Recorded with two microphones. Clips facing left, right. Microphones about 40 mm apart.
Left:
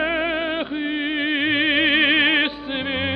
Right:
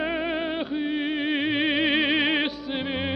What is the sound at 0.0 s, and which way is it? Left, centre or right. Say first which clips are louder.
Music: left 5 dB; left.